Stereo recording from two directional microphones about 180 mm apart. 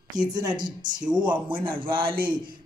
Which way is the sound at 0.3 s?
25° right (ahead or behind).